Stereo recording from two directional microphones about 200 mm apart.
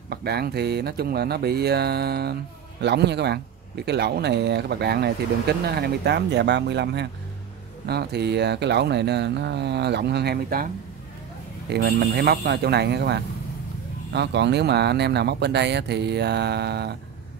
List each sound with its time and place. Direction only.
0.1 s a man's voice: 55° right (ahead or behind)
11.7 s a man's voice: 55° right (ahead or behind)